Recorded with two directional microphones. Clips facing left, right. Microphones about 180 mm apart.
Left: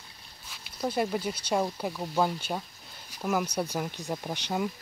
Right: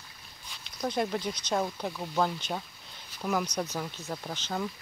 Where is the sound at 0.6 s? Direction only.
5° left (ahead or behind).